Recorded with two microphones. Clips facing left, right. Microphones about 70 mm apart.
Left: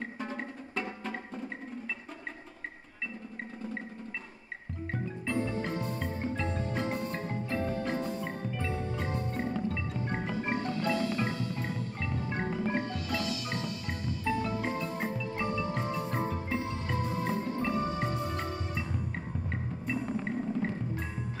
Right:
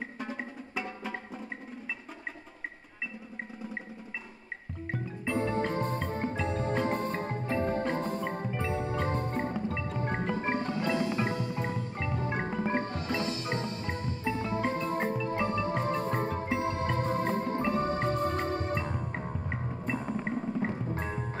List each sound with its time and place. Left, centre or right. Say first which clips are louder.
0.2 s music: right 1 dB; centre
5.3 s music: right 3 dB; right
8.5 s music: right 2 dB; right
8.7 s music: right 4 dB; right
10.7 s music: right 1 dB; right
12.6 s music: right 2 dB; right
20.2 s wood block: right 1 dB; centre
20.9 s music: right 3 dB; right